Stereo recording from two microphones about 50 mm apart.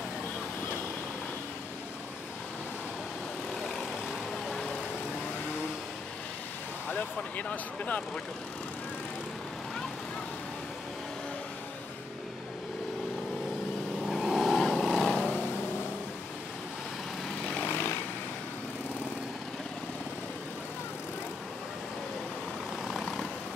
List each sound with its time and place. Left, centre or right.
4.5 s vehicle: centre
6.9 s speech: left
14.0 s vehicle: centre
17.6 s vehicle: left
22.8 s vehicle: centre